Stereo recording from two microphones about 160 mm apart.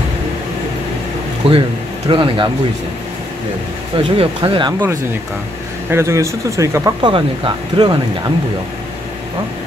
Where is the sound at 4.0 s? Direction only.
35° right (ahead or behind).